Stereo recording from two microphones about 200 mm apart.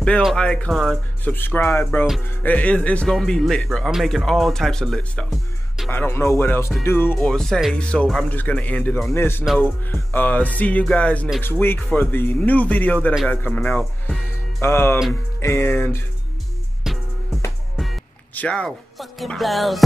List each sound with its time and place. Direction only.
0.0 s speech: 5° left (ahead or behind)
16.9 s music: centre (ahead or behind)
17.7 s speech: 5° left (ahead or behind)